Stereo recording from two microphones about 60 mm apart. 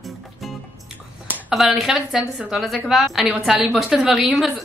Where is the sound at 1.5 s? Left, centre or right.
Centre.